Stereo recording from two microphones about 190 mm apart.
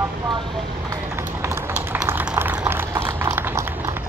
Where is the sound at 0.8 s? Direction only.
15° right (ahead or behind).